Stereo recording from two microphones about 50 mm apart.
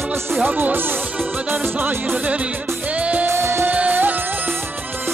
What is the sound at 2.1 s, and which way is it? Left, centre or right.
Music, right.